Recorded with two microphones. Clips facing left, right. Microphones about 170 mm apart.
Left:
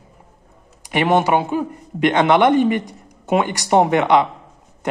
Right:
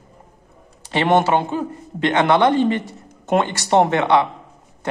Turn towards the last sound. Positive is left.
turn(degrees=15)  # may be behind; listen again after turning